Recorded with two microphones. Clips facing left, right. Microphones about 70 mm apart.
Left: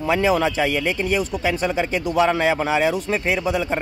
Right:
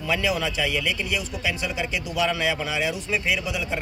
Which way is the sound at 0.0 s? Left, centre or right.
Left.